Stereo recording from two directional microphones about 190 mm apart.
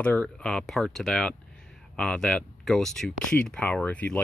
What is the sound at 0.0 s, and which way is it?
Speech, 5° left (ahead or behind).